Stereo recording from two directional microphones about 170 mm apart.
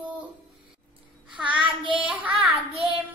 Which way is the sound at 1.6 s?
30° right (ahead or behind).